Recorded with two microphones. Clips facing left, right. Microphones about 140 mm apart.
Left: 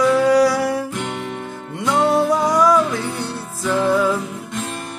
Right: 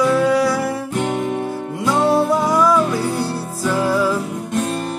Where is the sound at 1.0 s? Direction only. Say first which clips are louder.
Right 6 dB; 40° right (ahead or behind).